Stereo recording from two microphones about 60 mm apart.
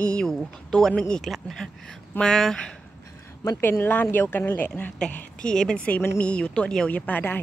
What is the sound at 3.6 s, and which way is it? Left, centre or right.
Speech, left.